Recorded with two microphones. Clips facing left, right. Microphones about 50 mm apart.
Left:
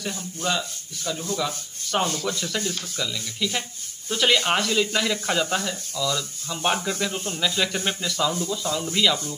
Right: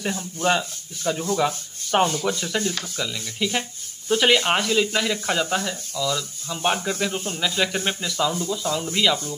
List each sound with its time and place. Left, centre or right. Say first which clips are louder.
0.0 s speech: right 5 dB; right
2.0 s speech: right 3 dB; centre